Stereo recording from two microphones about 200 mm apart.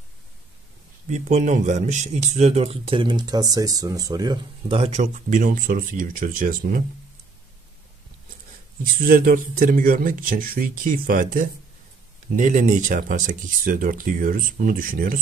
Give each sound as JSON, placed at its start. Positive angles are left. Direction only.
{"t": 1.0, "sound": "speech", "side_deg": -35}
{"t": 4.7, "sound": "speech", "side_deg": -35}
{"t": 8.9, "sound": "speech", "side_deg": -45}